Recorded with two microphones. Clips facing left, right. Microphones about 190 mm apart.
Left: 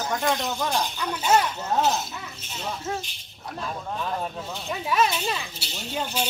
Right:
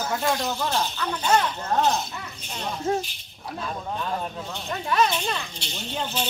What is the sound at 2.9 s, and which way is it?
Speech, 30° right (ahead or behind).